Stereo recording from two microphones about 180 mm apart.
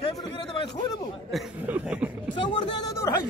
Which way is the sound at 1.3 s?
5° right (ahead or behind).